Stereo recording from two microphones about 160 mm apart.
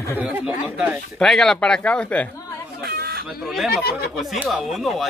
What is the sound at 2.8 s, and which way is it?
Chicken, 75° right (ahead or behind).